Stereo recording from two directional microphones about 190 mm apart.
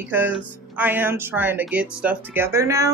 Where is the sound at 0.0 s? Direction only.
10° right (ahead or behind).